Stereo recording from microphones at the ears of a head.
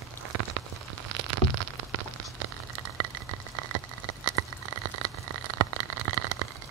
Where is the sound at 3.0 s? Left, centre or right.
Right.